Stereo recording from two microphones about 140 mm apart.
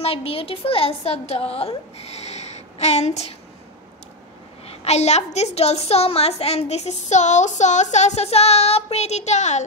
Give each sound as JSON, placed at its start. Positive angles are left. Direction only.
{"t": 0.0, "sound": "a woman's voice", "side_deg": 45}
{"t": 4.6, "sound": "a woman's voice", "side_deg": 50}